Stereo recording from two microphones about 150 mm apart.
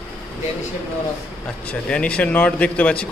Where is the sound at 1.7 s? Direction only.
10° left (ahead or behind).